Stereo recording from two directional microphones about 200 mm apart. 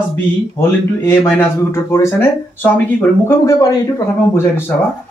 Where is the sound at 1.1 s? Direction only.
10° left (ahead or behind).